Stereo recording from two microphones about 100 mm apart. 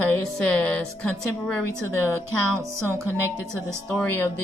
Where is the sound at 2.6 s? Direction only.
30° right (ahead or behind).